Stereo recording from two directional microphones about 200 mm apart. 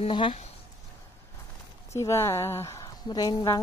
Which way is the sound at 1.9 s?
15° left (ahead or behind).